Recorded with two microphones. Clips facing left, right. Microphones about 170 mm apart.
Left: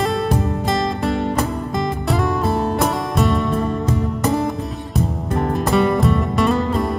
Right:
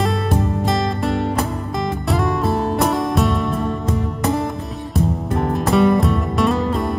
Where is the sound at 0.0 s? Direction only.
Centre (ahead or behind).